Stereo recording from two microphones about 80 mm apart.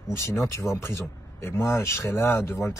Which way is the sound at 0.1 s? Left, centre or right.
Left.